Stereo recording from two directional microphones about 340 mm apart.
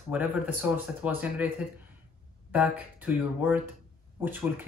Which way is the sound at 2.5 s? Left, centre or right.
Centre.